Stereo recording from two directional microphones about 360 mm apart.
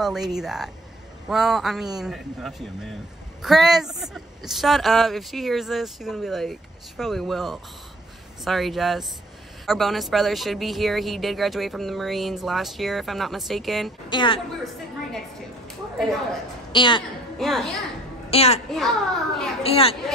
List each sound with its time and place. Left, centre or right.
0.0 s speech: centre
14.0 s a woman's voice: centre
16.7 s a woman's voice: centre
17.4 s speech: centre
18.3 s a child's voice: centre
18.7 s speech: centre
19.6 s a woman's voice: centre